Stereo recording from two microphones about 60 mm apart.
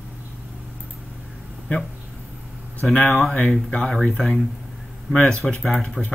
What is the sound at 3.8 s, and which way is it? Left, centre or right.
Speech, centre.